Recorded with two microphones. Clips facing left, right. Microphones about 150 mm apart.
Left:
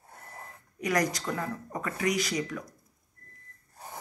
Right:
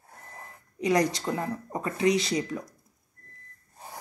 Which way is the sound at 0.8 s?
25° right (ahead or behind).